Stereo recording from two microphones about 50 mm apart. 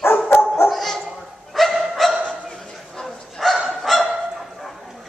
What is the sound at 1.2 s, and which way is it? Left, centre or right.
Dog, centre.